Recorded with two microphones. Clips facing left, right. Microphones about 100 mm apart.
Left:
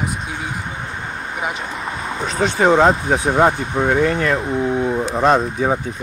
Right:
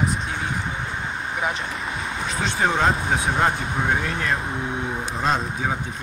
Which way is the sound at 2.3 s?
65° left (ahead or behind).